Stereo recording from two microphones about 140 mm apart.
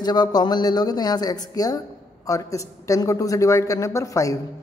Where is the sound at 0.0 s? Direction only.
30° left (ahead or behind).